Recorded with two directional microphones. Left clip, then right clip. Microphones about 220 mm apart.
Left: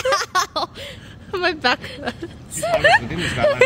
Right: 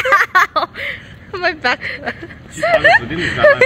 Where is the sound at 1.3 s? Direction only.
55° left (ahead or behind).